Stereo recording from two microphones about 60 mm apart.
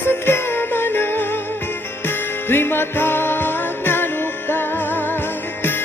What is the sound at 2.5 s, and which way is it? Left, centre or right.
Music, left.